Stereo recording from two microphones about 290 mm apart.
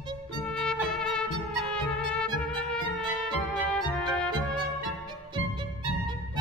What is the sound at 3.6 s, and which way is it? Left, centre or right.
Music, centre.